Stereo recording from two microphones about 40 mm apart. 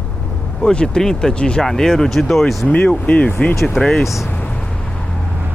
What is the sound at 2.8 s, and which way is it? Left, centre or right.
Speech, left.